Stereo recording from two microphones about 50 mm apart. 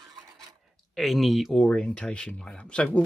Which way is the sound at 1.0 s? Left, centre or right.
Centre.